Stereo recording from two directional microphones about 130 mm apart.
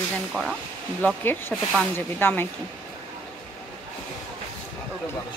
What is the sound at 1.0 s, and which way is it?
Speech, 15° left (ahead or behind).